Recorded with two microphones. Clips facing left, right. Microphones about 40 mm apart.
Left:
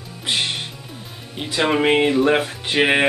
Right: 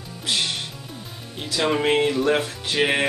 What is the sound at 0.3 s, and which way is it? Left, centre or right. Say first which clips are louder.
Music: left 2 dB; left.